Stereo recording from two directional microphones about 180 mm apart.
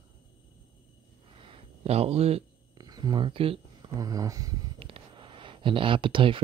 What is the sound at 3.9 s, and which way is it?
Speech, 20° right (ahead or behind).